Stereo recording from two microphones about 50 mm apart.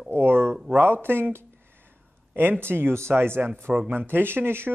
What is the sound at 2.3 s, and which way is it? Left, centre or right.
Speech, right.